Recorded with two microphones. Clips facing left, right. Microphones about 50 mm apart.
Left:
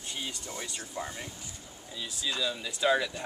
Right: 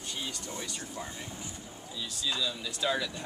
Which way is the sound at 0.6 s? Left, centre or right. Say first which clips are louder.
Left 1 dB; left.